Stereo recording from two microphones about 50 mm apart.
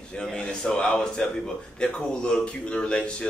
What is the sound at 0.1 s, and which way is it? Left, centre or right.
A man's voice, centre.